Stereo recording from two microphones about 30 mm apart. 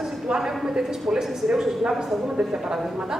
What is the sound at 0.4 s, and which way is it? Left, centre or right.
A man's voice, centre.